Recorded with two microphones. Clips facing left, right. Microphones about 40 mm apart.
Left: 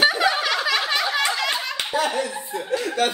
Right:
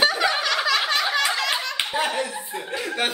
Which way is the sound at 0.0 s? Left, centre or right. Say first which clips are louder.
Left 2 dB; centre.